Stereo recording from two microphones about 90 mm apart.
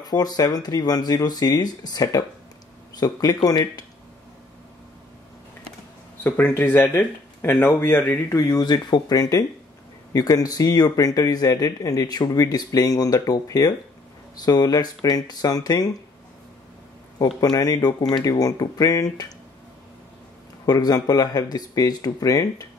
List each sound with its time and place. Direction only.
0.0 s speech: 45° left (ahead or behind)
6.2 s speech: 25° left (ahead or behind)
8.4 s speech: 45° left (ahead or behind)
17.4 s speech: 45° left (ahead or behind)
20.6 s speech: 45° left (ahead or behind)